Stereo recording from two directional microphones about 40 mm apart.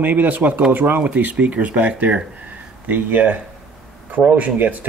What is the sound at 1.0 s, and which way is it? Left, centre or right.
Speech, right.